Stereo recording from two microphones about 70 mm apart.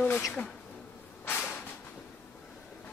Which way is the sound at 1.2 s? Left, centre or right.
Left.